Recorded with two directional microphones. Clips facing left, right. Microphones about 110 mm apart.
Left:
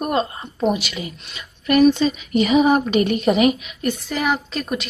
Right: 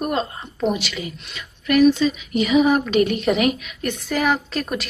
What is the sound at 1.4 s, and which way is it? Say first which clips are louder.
Speech: left 1 dB; 25° left (ahead or behind).